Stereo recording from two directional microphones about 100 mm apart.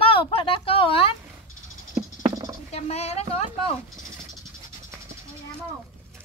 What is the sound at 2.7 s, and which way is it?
Speech, 90° left.